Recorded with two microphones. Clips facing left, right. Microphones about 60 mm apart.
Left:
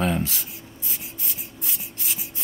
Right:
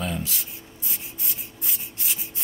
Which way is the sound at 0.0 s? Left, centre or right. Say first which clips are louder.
Left 6 dB; left.